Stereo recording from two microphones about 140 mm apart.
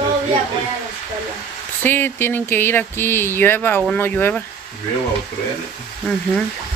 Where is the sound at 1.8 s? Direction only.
15° left (ahead or behind).